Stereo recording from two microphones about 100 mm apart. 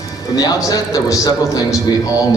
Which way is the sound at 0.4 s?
40° left (ahead or behind).